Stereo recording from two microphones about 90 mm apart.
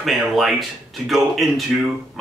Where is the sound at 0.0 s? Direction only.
Centre (ahead or behind).